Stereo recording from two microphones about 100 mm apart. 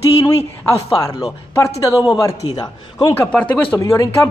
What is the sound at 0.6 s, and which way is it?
Speech, 35° left (ahead or behind).